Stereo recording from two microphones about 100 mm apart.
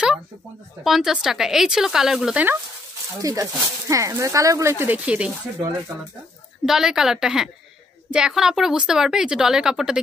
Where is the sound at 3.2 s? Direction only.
35° right (ahead or behind).